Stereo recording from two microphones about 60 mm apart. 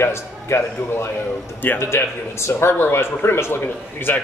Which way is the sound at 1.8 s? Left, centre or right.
Left.